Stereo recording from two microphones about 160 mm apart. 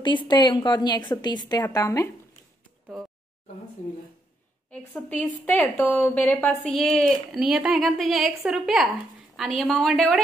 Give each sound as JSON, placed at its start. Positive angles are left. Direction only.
{"t": 0.0, "sound": "a woman's voice", "side_deg": 30}
{"t": 4.6, "sound": "a woman's voice", "side_deg": 10}